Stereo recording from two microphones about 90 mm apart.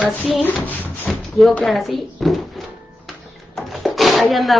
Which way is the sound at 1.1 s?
Centre (ahead or behind).